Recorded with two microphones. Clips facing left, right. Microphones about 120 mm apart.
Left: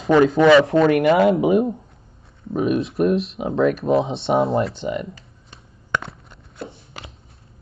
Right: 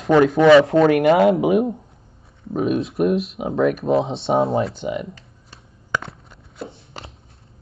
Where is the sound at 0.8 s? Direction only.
35° right (ahead or behind).